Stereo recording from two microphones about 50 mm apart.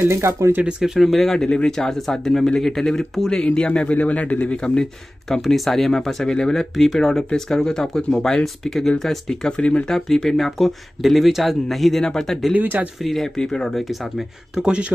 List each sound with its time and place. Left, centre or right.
0.0 s speech: right
0.7 s speech: centre
0.9 s speech: centre; by 4.6 s left
5.4 s speech: centre; by 9.8 s left
9.8 s speech: centre
12.5 s speech: right
13.0 s speech: centre
14.5 s speech: centre